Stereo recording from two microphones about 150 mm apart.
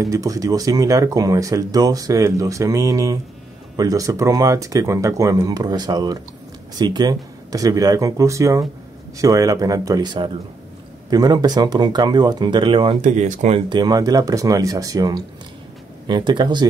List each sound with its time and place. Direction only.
0.0 s speech: 25° right (ahead or behind)
13.0 s speech: 50° right (ahead or behind)
13.7 s speech: 25° right (ahead or behind)